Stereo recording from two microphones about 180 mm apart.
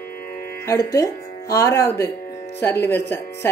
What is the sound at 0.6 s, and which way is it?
Speech, 15° left (ahead or behind).